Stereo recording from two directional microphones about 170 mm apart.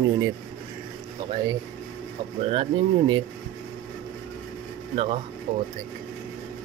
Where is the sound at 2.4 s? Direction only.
30° right (ahead or behind).